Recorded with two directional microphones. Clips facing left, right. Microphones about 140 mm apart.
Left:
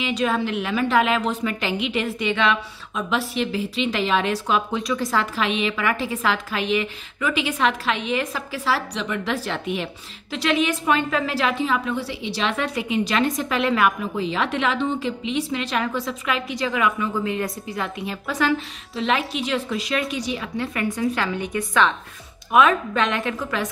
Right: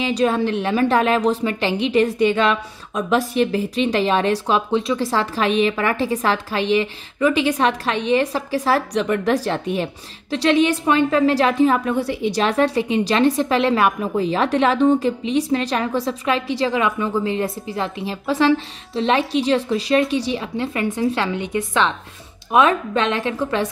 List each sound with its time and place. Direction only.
0.0 s a woman's voice: 35° right (ahead or behind)